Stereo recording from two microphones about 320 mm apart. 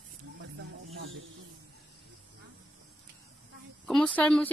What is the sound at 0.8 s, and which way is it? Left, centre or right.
Snake, right.